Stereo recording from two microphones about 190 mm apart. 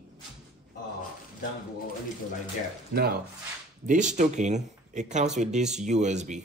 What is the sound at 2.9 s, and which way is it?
Speech, 50° right (ahead or behind).